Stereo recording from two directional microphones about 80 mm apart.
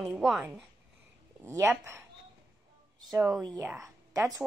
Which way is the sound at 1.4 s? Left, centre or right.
Right.